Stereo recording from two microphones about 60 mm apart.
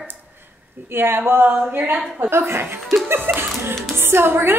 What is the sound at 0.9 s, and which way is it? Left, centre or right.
A woman's voice, right.